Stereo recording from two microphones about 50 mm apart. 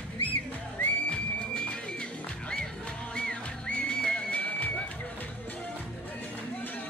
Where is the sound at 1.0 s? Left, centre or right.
Centre.